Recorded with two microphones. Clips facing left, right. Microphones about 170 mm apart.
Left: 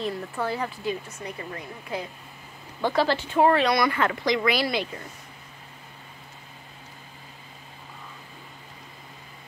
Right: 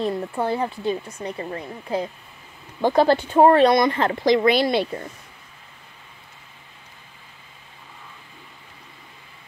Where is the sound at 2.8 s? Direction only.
45° right (ahead or behind); by 4.9 s 30° right (ahead or behind).